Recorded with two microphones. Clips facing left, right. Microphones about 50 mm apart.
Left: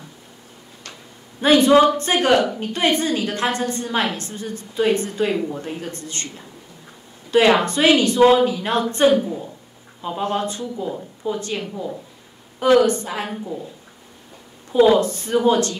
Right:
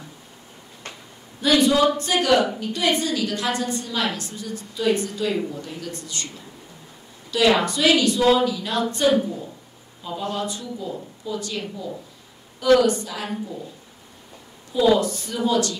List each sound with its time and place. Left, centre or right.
1.4 s a woman's voice: left
10.0 s a woman's voice: left
13.3 s a woman's voice: left
14.7 s a woman's voice: left